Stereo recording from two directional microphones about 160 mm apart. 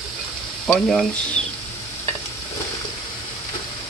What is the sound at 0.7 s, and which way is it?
Speech, centre (ahead or behind).